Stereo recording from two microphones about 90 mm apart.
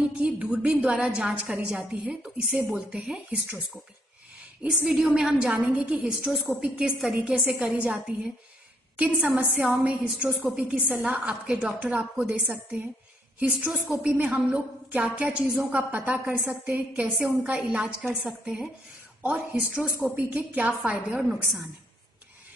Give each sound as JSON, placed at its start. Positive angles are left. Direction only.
{"t": 0.0, "sound": "a woman's voice", "side_deg": -10}
{"t": 4.6, "sound": "a woman's voice", "side_deg": -5}